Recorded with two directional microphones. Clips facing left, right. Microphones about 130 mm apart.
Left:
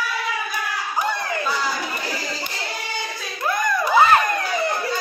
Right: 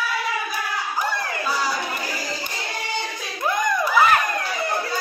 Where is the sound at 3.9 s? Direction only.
30° left (ahead or behind).